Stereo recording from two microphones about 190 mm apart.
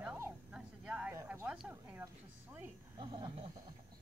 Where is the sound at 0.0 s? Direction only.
10° right (ahead or behind).